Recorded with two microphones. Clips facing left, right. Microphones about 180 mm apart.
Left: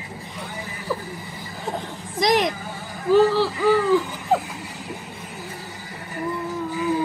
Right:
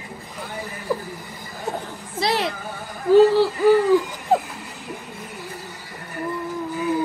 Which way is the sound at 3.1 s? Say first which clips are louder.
Right 3 dB; 15° right (ahead or behind).